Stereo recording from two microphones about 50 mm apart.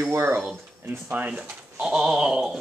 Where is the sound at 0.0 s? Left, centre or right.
Right.